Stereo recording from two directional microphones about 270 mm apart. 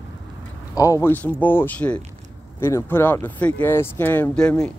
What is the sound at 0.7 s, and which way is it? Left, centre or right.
Speech, centre.